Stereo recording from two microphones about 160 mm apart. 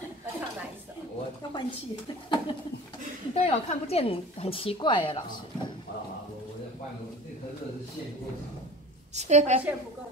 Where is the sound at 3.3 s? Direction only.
40° left (ahead or behind).